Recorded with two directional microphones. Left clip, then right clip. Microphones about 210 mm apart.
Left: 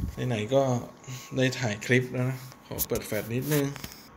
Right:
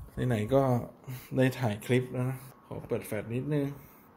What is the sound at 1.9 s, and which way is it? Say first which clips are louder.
Speech: left 6 dB; 5° right (ahead or behind).